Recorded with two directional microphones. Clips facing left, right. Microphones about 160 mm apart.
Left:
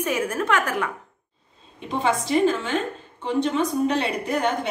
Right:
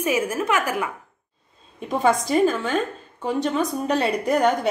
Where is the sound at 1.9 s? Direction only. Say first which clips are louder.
Right 2 dB; 40° right (ahead or behind).